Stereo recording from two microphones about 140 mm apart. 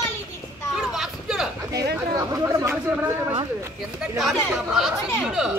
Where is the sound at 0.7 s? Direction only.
5° right (ahead or behind).